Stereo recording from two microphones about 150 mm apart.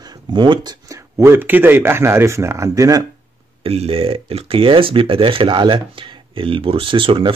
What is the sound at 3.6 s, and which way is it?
Speech, 40° right (ahead or behind).